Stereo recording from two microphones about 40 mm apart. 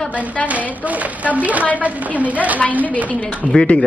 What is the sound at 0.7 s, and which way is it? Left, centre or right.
A woman's voice, right.